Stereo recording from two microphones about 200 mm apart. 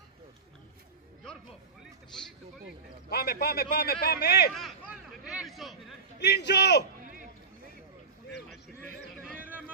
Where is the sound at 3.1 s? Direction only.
50° left (ahead or behind).